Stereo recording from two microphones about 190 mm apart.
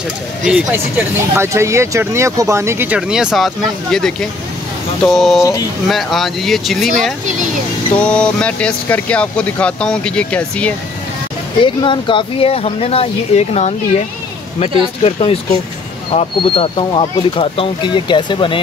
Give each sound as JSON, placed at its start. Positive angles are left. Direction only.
{"t": 0.5, "sound": "speech", "side_deg": -5}
{"t": 5.4, "sound": "speech", "side_deg": 15}
{"t": 5.9, "sound": "speech", "side_deg": 0}
{"t": 7.9, "sound": "speech", "side_deg": 5}
{"t": 11.6, "sound": "speech", "side_deg": 25}
{"t": 15.0, "sound": "speech", "side_deg": 30}